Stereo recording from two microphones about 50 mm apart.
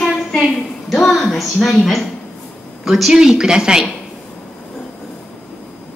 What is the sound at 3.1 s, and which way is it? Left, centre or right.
Speech, centre.